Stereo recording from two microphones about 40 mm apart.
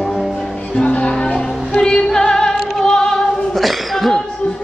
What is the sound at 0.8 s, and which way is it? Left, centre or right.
Music, left.